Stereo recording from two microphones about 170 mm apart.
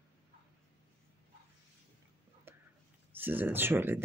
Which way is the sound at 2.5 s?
10° right (ahead or behind).